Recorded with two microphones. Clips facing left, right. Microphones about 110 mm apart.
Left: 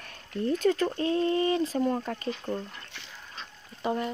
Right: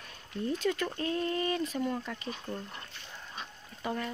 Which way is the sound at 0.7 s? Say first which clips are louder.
Left 6 dB; 30° left (ahead or behind).